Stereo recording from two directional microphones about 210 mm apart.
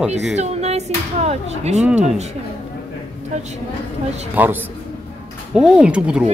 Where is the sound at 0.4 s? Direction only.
30° right (ahead or behind).